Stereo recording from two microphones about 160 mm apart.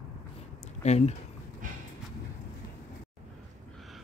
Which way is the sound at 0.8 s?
45° left (ahead or behind).